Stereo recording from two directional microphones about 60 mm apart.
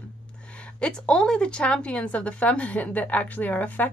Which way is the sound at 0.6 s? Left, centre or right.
Centre.